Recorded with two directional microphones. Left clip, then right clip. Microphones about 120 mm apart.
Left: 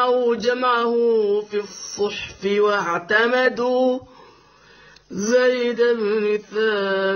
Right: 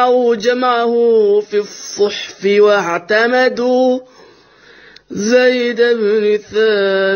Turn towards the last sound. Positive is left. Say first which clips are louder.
# right 7 dB
turn(degrees=-35)  # may be behind; listen again after turning